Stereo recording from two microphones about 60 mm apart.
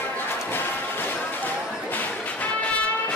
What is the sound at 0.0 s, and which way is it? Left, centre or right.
Music, left.